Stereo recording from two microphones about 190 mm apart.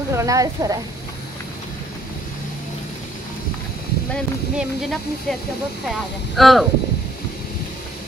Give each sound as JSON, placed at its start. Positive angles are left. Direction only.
{"t": 0.1, "sound": "speech", "side_deg": -15}
{"t": 4.1, "sound": "speech", "side_deg": 0}
{"t": 6.3, "sound": "speech", "side_deg": 0}